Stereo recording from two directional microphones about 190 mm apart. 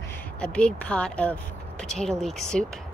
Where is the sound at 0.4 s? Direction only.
5° left (ahead or behind).